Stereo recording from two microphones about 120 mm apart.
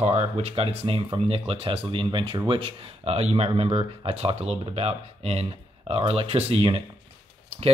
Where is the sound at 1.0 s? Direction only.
45° right (ahead or behind).